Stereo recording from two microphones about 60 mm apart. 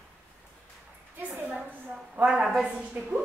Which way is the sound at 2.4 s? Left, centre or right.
Centre.